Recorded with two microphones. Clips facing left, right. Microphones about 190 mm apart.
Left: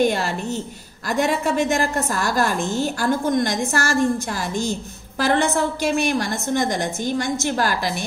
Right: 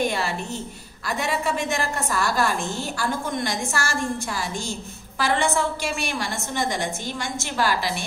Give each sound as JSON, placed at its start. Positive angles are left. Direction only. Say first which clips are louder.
{"t": 1.0, "sound": "a woman's voice", "louder": "left 5 dB", "side_deg": 45}